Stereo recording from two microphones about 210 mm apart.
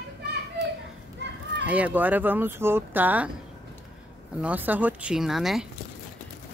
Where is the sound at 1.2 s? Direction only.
55° right (ahead or behind).